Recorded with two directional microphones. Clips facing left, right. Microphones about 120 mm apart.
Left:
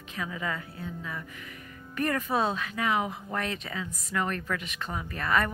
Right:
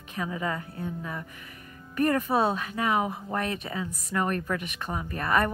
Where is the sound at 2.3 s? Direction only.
10° right (ahead or behind).